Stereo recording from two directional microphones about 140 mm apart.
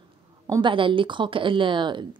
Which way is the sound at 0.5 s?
35° right (ahead or behind).